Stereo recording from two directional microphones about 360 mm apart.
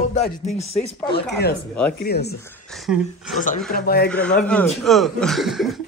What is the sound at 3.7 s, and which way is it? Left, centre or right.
Speech, left.